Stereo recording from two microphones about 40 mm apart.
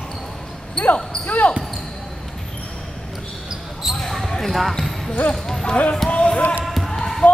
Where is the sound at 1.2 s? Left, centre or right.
Left.